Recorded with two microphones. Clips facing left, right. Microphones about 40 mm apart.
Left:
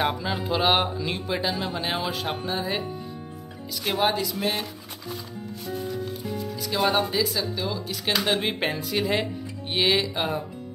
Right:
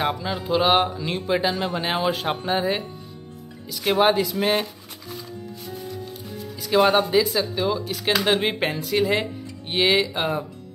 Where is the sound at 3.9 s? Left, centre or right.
Right.